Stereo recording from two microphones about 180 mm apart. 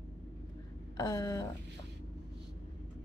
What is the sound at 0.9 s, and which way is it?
Speech, 20° left (ahead or behind).